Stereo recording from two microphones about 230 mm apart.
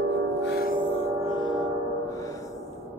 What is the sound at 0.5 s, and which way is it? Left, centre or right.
Music, left.